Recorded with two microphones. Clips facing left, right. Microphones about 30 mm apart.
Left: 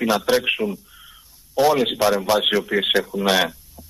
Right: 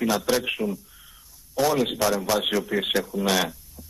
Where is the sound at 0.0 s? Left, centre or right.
Left.